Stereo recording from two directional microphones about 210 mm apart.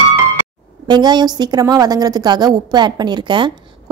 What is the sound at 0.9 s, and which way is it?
A woman's voice, 20° right (ahead or behind).